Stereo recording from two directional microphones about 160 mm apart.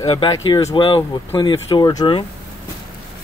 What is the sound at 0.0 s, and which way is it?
Speech, 35° left (ahead or behind).